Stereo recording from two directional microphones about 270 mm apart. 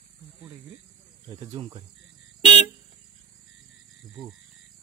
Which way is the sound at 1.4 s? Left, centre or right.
Centre.